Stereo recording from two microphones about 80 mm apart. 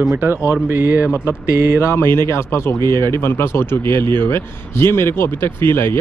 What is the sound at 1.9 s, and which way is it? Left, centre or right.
Speech, left.